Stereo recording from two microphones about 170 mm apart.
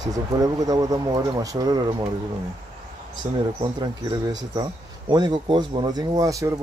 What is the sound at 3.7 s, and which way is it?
Speech, 25° right (ahead or behind).